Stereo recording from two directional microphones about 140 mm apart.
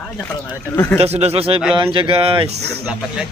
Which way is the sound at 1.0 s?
50° right (ahead or behind).